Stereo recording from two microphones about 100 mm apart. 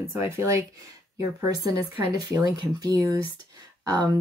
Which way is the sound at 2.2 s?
40° right (ahead or behind).